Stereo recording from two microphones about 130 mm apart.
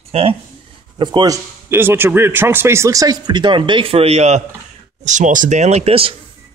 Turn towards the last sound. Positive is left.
turn(degrees=-50)  # may be behind; listen again after turning